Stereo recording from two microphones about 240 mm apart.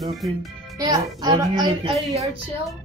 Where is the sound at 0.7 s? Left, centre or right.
Centre.